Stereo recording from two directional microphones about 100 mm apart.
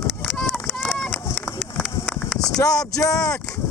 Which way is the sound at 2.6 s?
35° left (ahead or behind).